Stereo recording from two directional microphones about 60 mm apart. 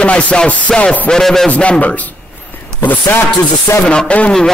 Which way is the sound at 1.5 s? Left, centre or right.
Left.